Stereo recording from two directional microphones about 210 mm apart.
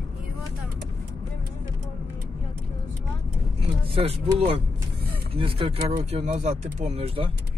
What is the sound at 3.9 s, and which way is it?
Speech, 25° right (ahead or behind).